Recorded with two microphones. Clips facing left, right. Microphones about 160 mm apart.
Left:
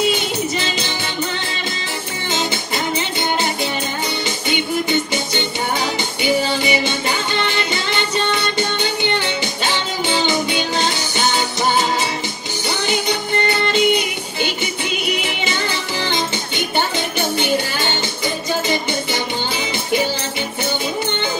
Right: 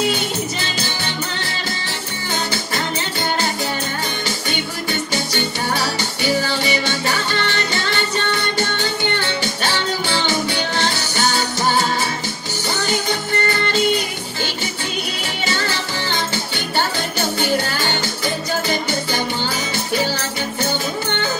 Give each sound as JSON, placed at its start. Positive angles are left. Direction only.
{"t": 2.3, "sound": "music", "side_deg": 20}
{"t": 5.1, "sound": "music", "side_deg": 20}
{"t": 13.5, "sound": "music", "side_deg": 20}